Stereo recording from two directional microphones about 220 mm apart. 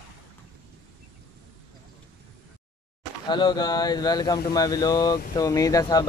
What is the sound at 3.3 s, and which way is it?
Speech, 20° left (ahead or behind).